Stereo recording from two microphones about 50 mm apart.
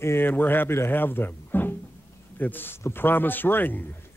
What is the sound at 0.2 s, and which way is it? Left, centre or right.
A man's voice, left.